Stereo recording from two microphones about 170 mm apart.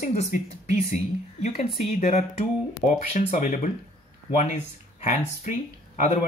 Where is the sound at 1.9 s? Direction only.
45° left (ahead or behind).